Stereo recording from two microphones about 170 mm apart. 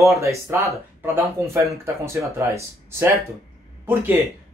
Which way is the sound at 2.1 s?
15° right (ahead or behind).